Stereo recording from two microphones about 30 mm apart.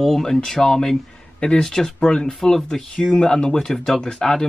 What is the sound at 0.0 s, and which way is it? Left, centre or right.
Speech, centre.